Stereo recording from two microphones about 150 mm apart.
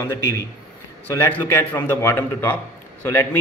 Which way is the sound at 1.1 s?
20° left (ahead or behind).